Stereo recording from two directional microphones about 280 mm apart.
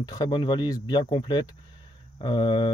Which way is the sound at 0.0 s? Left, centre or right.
Centre.